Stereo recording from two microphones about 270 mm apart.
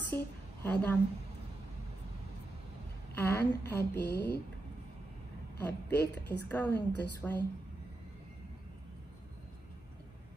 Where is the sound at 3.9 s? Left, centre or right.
Left.